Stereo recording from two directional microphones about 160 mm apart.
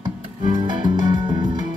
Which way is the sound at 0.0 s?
30° right (ahead or behind).